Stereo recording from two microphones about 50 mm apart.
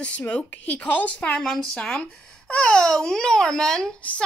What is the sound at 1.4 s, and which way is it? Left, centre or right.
A child's voice, centre.